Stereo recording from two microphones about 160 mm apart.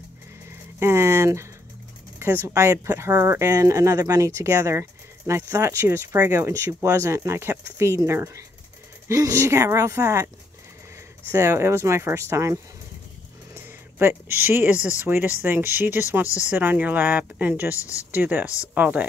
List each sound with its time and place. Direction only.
0.7 s speech: 15° right (ahead or behind)
11.3 s speech: 20° right (ahead or behind)
13.9 s speech: 15° right (ahead or behind)
17.7 s speech: 20° left (ahead or behind)
18.1 s speech: 10° right (ahead or behind)